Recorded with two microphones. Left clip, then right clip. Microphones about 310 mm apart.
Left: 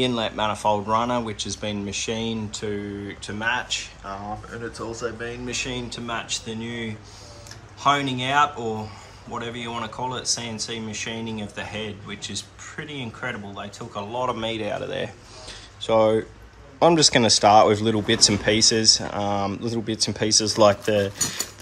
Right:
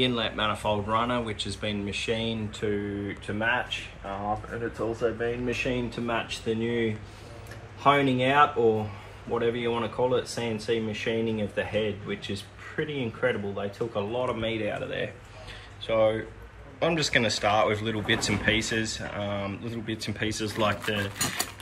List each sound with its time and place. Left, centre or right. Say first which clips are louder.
0.0 s speech: left 3 dB; centre